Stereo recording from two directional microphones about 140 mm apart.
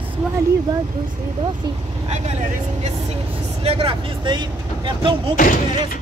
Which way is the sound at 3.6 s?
40° right (ahead or behind).